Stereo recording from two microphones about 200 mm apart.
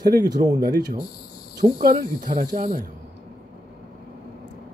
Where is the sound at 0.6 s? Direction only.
50° right (ahead or behind).